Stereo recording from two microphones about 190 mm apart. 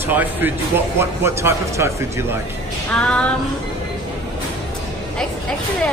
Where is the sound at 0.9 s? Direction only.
15° right (ahead or behind).